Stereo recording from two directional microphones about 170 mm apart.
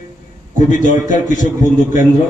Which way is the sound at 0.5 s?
50° left (ahead or behind).